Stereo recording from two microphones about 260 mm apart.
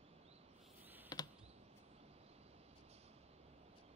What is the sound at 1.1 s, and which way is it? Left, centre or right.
Computer keyboard, centre.